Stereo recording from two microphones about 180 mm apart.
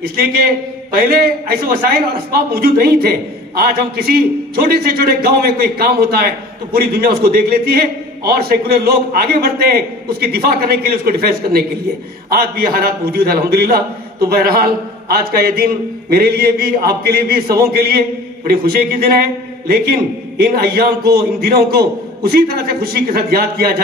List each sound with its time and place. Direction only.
0.0 s a man's voice: 60° right (ahead or behind)